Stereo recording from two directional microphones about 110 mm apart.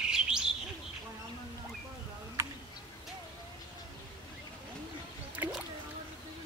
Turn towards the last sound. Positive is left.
turn(degrees=-20)  # may be behind; listen again after turning